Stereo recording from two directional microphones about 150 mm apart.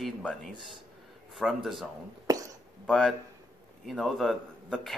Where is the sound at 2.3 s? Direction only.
25° right (ahead or behind).